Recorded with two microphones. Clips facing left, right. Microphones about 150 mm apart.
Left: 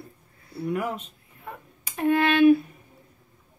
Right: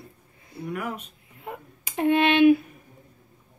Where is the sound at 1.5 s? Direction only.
20° right (ahead or behind).